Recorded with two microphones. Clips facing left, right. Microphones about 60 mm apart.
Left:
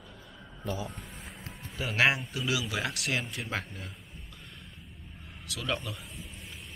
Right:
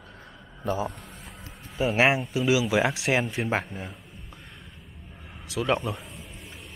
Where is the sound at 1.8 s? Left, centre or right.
Right.